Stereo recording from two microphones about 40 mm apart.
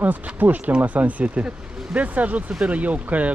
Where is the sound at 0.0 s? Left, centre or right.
Right.